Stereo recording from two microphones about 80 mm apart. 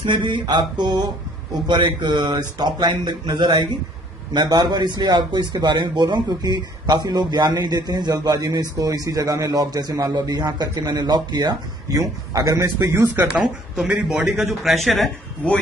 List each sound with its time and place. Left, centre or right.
0.0 s a man's voice: right
12.7 s speech: right
13.3 s a man's voice: centre